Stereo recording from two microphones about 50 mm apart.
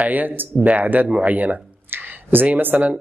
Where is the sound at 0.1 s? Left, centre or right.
Right.